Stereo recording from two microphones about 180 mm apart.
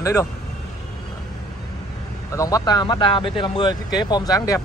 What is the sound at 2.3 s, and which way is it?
Speech, 20° left (ahead or behind).